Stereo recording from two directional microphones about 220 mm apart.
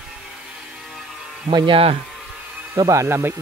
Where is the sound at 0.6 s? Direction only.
Centre (ahead or behind).